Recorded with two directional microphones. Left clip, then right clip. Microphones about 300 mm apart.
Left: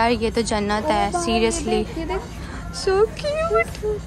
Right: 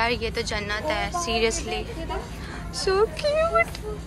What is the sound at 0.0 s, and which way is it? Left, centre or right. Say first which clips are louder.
A woman's voice: left 5 dB; centre.